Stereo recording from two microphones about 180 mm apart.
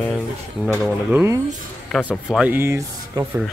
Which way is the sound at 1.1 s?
15° right (ahead or behind).